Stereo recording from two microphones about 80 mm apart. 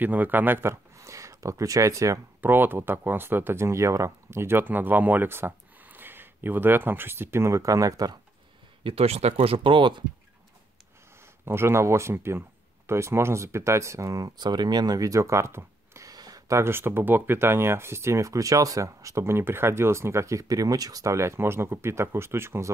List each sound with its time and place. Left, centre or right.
0.0 s speech: right
0.9 s a sound: right
2.4 s speech: right
8.8 s speech: right
11.4 s speech: right
16.1 s a sound: right
16.5 s speech: right